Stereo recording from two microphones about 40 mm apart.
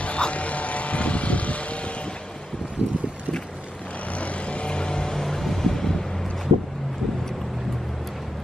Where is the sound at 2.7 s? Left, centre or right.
Right.